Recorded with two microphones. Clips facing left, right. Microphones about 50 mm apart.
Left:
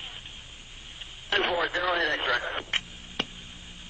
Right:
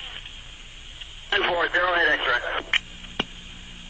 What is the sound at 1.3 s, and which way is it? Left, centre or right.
Speech, right.